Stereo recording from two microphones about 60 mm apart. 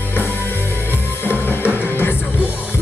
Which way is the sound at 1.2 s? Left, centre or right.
Left.